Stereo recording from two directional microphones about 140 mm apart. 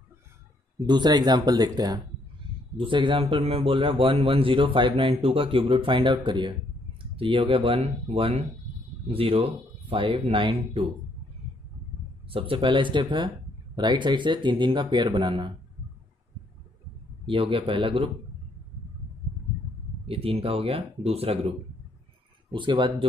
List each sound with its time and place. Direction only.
0.8 s a man's voice: 30° right (ahead or behind)
12.3 s a man's voice: 40° right (ahead or behind)
17.3 s a man's voice: 40° right (ahead or behind)
20.1 s speech: 40° right (ahead or behind)
22.5 s a man's voice: 35° right (ahead or behind)